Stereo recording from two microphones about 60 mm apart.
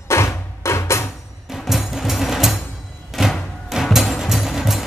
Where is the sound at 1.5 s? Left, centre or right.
Centre.